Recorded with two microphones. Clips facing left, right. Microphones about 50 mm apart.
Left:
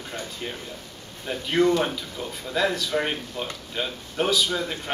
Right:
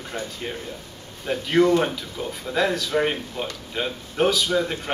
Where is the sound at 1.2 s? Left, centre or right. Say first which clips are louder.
Right 3 dB; centre.